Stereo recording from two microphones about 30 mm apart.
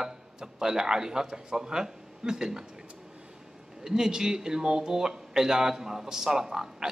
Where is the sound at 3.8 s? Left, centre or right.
Right.